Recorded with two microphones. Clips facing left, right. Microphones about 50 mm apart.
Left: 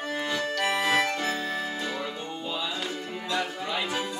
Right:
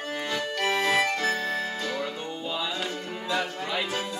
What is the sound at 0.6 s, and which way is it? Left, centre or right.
Accordion, centre.